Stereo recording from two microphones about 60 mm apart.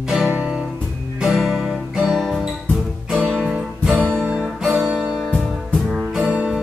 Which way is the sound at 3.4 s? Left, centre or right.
Right.